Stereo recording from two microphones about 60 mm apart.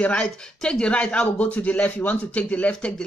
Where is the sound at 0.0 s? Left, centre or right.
Left.